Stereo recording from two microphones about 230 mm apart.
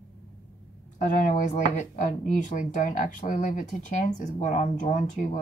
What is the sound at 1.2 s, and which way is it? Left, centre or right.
Speech, left.